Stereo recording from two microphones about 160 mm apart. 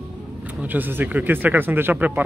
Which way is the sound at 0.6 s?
10° right (ahead or behind).